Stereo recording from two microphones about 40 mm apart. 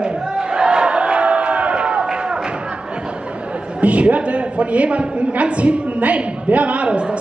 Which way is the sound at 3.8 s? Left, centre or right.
Right.